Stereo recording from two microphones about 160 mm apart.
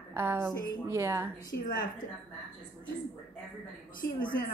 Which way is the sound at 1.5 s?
85° left.